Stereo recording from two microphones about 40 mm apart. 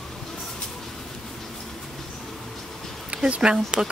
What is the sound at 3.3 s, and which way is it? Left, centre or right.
Speech, right.